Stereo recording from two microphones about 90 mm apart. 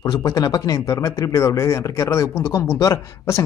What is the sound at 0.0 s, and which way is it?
Speech, 40° left (ahead or behind).